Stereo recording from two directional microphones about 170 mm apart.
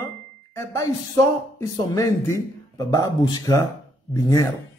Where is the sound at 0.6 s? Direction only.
20° left (ahead or behind).